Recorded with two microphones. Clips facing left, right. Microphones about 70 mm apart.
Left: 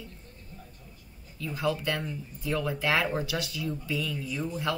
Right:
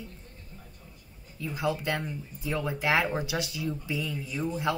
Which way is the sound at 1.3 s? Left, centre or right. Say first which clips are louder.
Even; right.